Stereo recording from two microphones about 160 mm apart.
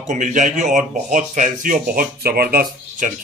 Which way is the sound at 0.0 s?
50° right (ahead or behind).